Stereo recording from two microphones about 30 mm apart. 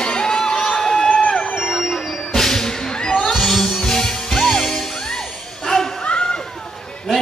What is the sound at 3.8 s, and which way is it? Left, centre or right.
Music, centre.